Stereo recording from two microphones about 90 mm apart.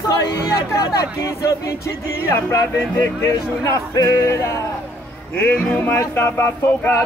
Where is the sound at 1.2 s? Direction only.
40° left (ahead or behind).